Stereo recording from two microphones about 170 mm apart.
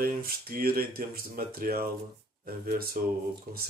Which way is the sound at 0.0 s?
60° right (ahead or behind).